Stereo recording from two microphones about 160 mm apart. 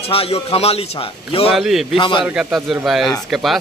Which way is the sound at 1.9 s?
30° left (ahead or behind).